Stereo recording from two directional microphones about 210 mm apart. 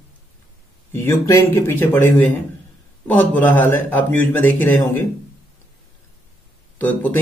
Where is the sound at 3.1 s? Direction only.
10° left (ahead or behind).